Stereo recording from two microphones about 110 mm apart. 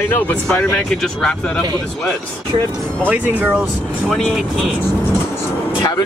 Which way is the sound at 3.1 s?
10° right (ahead or behind).